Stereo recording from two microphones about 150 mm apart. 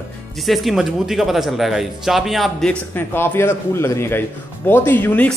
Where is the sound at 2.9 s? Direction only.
15° left (ahead or behind).